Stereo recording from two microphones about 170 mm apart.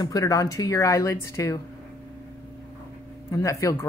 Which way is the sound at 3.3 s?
20° left (ahead or behind).